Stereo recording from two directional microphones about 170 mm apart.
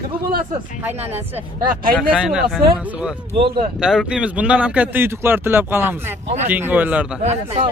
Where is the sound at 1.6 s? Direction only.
55° right (ahead or behind).